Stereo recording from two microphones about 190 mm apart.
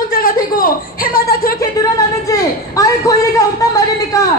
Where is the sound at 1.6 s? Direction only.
20° left (ahead or behind).